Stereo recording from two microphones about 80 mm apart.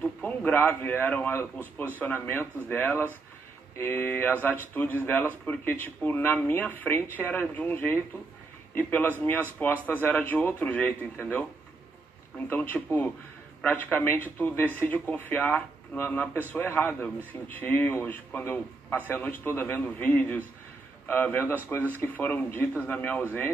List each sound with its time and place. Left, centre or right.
0.0 s a man's voice: centre